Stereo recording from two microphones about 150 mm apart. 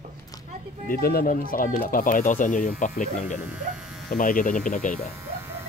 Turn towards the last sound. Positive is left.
turn(degrees=60)  # may be behind; listen again after turning